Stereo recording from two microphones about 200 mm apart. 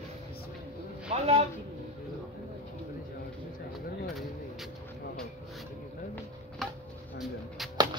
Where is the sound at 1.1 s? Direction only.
30° right (ahead or behind).